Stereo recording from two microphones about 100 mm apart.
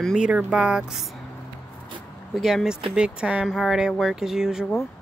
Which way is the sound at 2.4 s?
Centre (ahead or behind).